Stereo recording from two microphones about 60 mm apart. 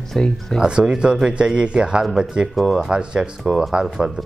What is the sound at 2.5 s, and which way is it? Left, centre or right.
Speech, centre.